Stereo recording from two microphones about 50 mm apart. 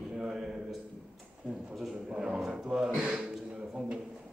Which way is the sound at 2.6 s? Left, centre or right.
Centre.